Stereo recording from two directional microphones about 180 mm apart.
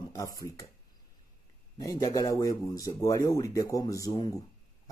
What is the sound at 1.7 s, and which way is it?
Speech, 20° left (ahead or behind).